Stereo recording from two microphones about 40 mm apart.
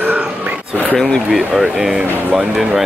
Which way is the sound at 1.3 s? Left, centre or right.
Centre.